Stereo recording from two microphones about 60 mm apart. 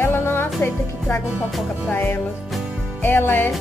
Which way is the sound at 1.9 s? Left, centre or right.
Left.